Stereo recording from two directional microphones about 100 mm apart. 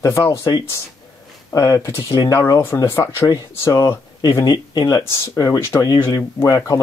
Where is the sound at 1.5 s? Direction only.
35° left (ahead or behind).